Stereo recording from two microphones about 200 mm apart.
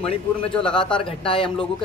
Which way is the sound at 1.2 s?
25° left (ahead or behind).